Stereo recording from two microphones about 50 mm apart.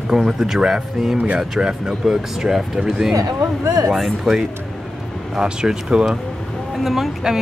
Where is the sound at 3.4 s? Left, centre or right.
Right.